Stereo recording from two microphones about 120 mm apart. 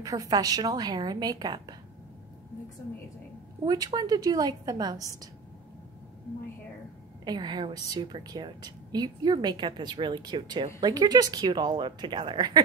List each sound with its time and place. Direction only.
0.0 s a woman's voice: 30° right (ahead or behind)
3.6 s a woman's voice: 35° right (ahead or behind)
7.2 s a woman's voice: 40° right (ahead or behind)